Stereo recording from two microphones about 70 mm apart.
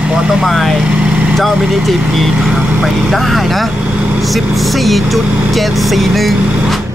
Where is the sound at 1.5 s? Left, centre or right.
Centre.